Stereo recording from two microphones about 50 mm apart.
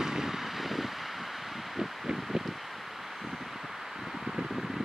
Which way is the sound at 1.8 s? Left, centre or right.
Centre.